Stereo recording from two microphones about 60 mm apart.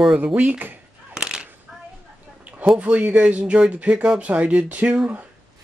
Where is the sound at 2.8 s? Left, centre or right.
Right.